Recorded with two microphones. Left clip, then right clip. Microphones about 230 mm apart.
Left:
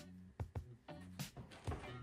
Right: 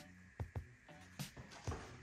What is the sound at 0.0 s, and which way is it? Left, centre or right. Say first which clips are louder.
Music: right 1 dB; centre.